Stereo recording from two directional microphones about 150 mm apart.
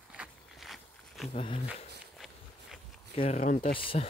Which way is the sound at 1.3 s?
35° left (ahead or behind).